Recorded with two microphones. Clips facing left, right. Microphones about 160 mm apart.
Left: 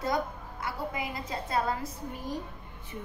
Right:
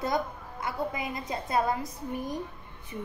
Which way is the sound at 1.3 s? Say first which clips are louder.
Right 3 dB; 20° right (ahead or behind).